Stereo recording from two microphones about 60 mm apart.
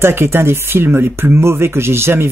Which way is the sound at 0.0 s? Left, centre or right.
Right.